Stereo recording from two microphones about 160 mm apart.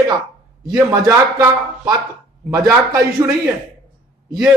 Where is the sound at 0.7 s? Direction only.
20° right (ahead or behind).